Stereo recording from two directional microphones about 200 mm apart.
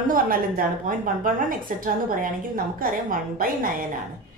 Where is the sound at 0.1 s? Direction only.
45° right (ahead or behind).